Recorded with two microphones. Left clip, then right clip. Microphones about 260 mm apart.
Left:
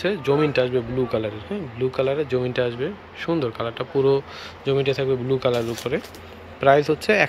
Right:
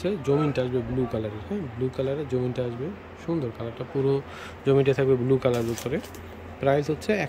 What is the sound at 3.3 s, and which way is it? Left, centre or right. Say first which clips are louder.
Speech: left 5 dB; centre.